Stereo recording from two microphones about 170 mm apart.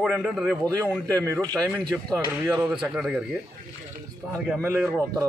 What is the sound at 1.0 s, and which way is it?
Speech, 20° right (ahead or behind).